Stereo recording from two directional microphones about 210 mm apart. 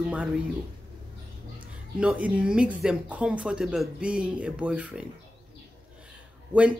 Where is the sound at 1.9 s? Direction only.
5° right (ahead or behind).